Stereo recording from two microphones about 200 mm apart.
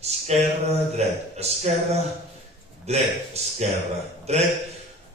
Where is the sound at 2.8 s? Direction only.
30° right (ahead or behind).